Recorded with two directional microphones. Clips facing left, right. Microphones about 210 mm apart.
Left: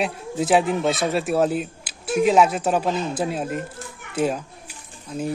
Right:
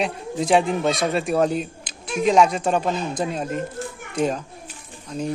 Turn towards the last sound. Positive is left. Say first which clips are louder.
# even
turn(degrees=5)  # may be behind; listen again after turning